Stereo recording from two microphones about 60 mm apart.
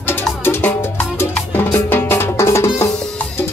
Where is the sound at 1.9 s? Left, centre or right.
Left.